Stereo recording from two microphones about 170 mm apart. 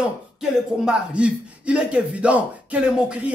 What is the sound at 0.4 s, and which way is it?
Speech, 5° right (ahead or behind).